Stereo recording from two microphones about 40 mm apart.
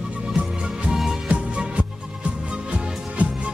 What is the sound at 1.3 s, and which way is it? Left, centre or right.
Music, right.